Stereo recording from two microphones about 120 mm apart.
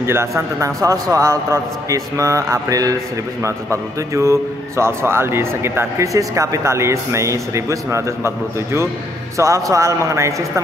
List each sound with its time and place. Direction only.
0.0 s a man's voice: 20° right (ahead or behind)
9.4 s a man's voice: 25° right (ahead or behind)